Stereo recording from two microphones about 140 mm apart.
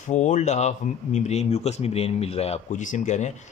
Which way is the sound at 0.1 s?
60° left (ahead or behind).